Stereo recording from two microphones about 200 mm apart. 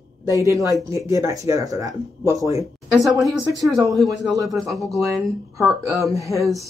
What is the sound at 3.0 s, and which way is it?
Speech, centre (ahead or behind).